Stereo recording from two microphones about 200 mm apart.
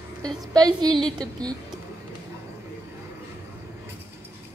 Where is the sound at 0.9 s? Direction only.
5° left (ahead or behind).